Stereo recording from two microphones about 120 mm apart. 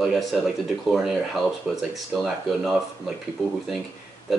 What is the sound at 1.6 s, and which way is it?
Speech, centre (ahead or behind).